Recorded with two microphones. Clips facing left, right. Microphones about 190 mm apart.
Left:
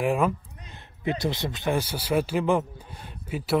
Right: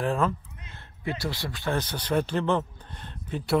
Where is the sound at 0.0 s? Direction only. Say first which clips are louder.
Left 2 dB; 15° left (ahead or behind).